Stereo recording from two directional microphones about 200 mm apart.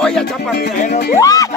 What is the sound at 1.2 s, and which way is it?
Music, 15° left (ahead or behind).